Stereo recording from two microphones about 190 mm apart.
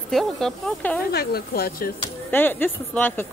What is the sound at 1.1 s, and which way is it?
Speech, 55° left (ahead or behind).